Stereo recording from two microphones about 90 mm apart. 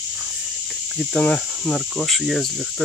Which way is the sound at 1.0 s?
10° left (ahead or behind).